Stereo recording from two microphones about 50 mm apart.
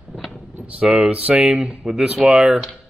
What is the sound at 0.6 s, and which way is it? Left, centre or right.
Speech, right.